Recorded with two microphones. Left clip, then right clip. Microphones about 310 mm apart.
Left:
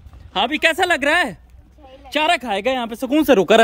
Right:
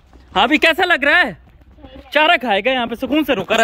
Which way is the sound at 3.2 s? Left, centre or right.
Left.